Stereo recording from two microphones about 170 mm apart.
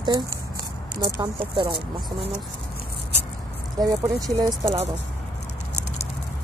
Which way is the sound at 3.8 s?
20° right (ahead or behind).